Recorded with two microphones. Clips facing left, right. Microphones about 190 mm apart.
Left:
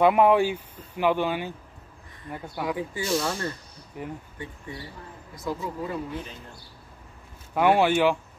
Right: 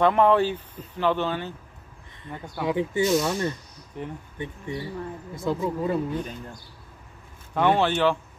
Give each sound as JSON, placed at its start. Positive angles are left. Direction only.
{"t": 0.0, "sound": "speech", "side_deg": 10}
{"t": 2.6, "sound": "speech", "side_deg": -25}
{"t": 3.9, "sound": "speech", "side_deg": 10}
{"t": 4.4, "sound": "speech", "side_deg": -15}
{"t": 5.3, "sound": "speech", "side_deg": -25}
{"t": 7.5, "sound": "speech", "side_deg": 10}